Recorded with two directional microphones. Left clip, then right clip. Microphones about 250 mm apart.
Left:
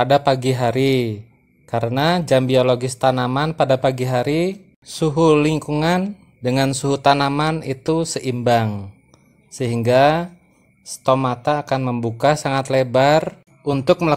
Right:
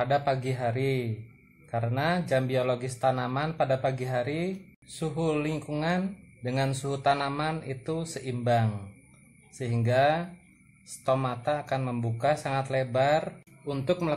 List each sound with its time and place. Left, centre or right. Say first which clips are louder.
0.0 s a man's voice: left 11 dB; left